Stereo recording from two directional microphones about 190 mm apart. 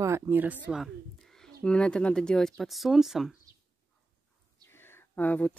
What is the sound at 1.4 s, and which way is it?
Speech, 5° left (ahead or behind).